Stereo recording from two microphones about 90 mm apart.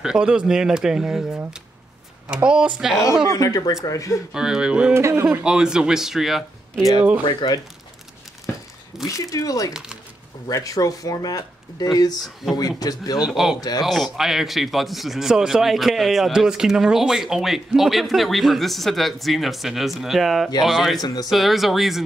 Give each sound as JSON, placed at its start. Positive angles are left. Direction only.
{"t": 0.0, "sound": "speech", "side_deg": -10}
{"t": 3.3, "sound": "speech", "side_deg": 40}
{"t": 4.3, "sound": "speech", "side_deg": -5}
{"t": 4.9, "sound": "speech", "side_deg": -30}
{"t": 5.3, "sound": "speech", "side_deg": -10}
{"t": 7.2, "sound": "speech", "side_deg": 55}
{"t": 9.0, "sound": "a man's voice", "side_deg": 40}
{"t": 13.2, "sound": "a man's voice", "side_deg": -5}
{"t": 13.6, "sound": "a man's voice", "side_deg": 45}
{"t": 13.8, "sound": "a man's voice", "side_deg": 0}
{"t": 21.0, "sound": "a man's voice", "side_deg": 45}
{"t": 21.3, "sound": "a man's voice", "side_deg": 0}